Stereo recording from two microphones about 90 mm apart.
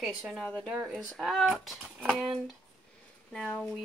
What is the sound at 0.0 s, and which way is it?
Speech, centre (ahead or behind).